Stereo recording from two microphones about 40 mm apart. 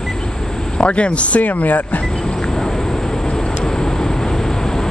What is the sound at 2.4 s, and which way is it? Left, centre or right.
Vehicle, centre.